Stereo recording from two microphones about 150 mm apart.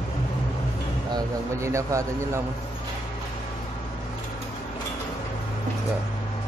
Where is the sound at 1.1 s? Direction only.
20° right (ahead or behind).